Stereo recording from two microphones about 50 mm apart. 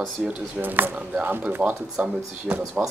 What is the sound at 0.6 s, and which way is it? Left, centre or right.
Speech, right.